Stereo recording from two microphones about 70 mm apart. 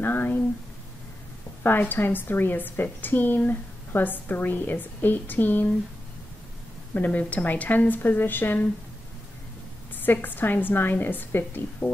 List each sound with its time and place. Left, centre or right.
0.0 s a woman's voice: left
1.6 s a woman's voice: left
6.9 s a woman's voice: left
10.2 s a woman's voice: left